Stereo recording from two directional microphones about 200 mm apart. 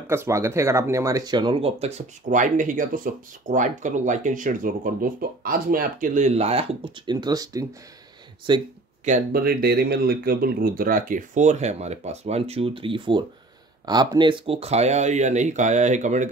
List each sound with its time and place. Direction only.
0.1 s speech: 15° right (ahead or behind)
9.0 s speech: 45° right (ahead or behind)